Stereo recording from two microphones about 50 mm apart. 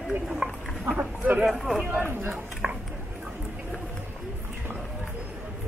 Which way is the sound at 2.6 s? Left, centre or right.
Centre.